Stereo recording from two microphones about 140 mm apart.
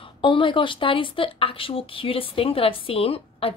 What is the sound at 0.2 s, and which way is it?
Speech, 35° left (ahead or behind).